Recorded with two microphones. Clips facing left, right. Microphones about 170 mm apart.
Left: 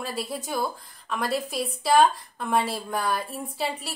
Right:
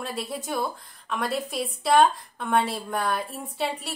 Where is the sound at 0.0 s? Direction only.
Centre (ahead or behind).